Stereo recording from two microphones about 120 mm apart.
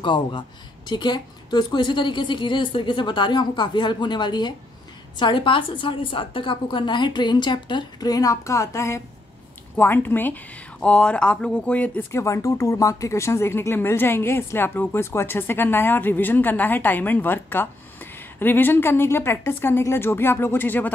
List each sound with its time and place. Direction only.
0.0 s a woman's voice: 40° left (ahead or behind); by 12.2 s 10° left (ahead or behind)
12.2 s speech: 25° left (ahead or behind)